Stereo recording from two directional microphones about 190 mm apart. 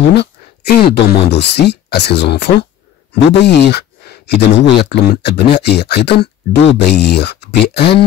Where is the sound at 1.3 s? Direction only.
65° left (ahead or behind).